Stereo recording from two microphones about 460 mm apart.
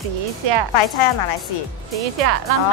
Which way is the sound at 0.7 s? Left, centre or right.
Left.